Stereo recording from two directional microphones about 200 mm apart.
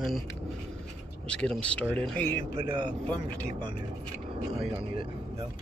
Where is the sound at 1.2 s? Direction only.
5° left (ahead or behind).